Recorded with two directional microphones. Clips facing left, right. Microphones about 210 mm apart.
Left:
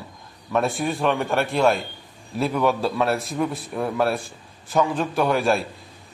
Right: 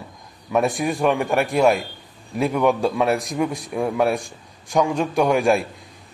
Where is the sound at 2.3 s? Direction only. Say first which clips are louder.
Right 2 dB; 15° right (ahead or behind).